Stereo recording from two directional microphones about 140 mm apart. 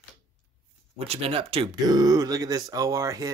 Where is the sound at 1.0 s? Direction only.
45° right (ahead or behind).